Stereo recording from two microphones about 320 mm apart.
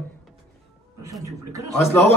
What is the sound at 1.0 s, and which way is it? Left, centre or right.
Speech, centre.